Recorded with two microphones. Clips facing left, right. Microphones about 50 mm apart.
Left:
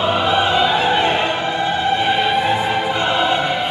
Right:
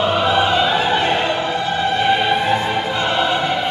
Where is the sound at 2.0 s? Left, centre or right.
Centre.